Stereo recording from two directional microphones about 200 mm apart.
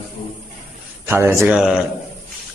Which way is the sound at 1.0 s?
10° right (ahead or behind).